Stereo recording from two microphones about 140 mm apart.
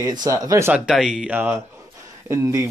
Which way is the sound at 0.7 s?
5° right (ahead or behind).